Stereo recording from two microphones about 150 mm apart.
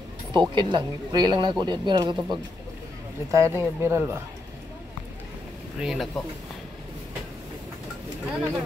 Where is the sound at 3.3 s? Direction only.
20° right (ahead or behind).